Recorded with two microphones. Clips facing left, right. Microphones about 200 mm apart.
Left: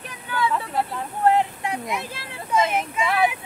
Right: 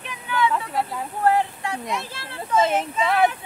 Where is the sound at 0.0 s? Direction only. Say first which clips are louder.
Right 2 dB; 35° left (ahead or behind).